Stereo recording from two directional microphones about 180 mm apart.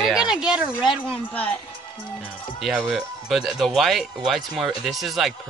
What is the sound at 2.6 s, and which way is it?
Speech, 5° right (ahead or behind).